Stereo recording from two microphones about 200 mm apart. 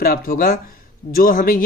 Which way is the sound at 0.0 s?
45° left (ahead or behind).